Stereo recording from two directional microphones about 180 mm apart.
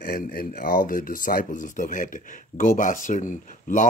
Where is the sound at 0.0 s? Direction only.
55° left (ahead or behind).